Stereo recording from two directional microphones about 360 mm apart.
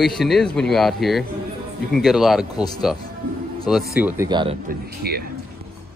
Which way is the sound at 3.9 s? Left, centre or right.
Centre.